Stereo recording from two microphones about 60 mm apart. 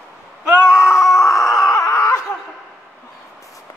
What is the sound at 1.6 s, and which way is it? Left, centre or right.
Screaming, left.